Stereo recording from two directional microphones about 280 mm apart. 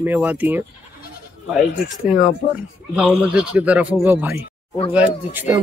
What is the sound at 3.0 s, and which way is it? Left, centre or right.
A man's voice, centre.